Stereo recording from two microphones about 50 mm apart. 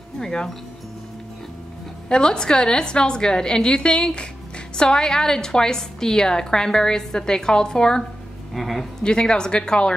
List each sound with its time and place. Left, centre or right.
0.2 s a woman's voice: centre
2.0 s a woman's voice: centre
8.5 s speech: centre
9.0 s a woman's voice: centre